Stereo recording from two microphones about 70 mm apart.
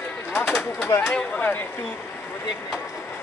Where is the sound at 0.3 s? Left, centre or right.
Left.